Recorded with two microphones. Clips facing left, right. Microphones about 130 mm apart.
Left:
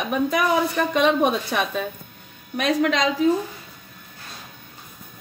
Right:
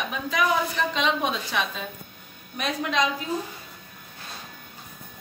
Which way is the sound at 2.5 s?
90° left.